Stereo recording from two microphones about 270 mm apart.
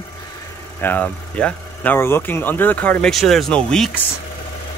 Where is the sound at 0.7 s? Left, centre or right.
Centre.